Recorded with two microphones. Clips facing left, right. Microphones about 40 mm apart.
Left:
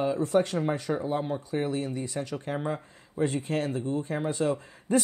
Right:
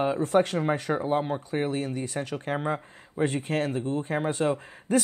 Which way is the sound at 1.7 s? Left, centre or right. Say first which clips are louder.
Right 1 dB; centre.